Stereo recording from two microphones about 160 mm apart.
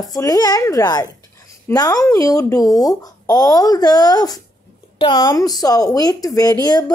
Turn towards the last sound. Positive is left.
turn(degrees=25)  # may be behind; listen again after turning